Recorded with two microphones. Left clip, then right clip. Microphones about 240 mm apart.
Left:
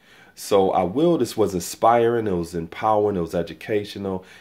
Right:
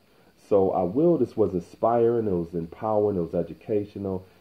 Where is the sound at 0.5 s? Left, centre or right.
Left.